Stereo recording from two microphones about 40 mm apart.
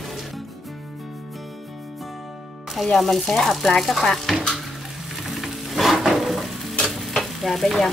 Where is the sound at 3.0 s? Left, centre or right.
Centre.